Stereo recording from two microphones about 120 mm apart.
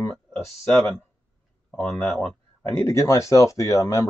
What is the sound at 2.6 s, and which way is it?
Speech, 25° left (ahead or behind).